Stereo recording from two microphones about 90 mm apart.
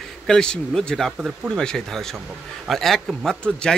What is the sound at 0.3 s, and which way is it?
Speech, 5° left (ahead or behind).